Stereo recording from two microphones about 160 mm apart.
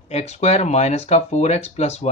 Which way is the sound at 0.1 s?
45° left (ahead or behind).